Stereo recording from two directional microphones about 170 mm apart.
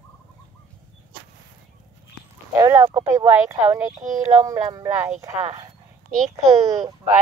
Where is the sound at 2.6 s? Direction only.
15° right (ahead or behind).